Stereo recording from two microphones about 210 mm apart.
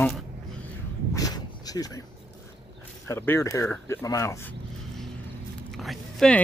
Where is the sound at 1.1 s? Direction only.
15° left (ahead or behind).